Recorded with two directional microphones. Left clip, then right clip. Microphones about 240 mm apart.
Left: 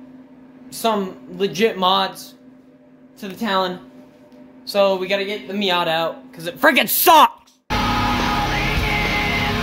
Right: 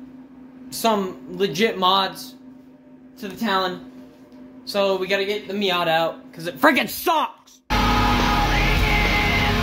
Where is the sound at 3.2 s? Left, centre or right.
Left.